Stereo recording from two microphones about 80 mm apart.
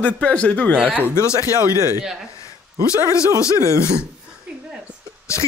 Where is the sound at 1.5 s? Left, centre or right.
Right.